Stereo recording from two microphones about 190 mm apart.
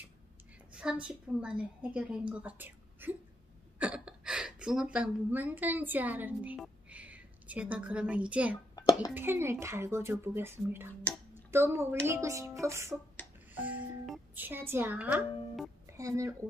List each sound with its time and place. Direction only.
0.7 s a woman's voice: 5° right (ahead or behind)
8.7 s a sound: 20° left (ahead or behind)
9.1 s a woman's voice: 10° right (ahead or behind)
13.6 s speech: 5° right (ahead or behind)
16.0 s a woman's voice: 15° right (ahead or behind)